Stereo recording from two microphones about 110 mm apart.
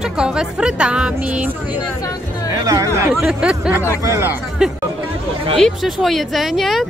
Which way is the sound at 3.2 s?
10° right (ahead or behind).